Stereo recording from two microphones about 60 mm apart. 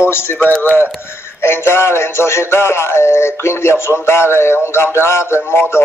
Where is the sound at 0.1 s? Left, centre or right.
Left.